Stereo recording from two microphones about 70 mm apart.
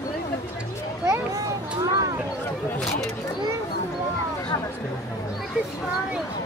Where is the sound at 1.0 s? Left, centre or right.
Right.